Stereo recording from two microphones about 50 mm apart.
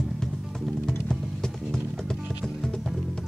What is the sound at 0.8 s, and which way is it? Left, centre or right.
Music, centre.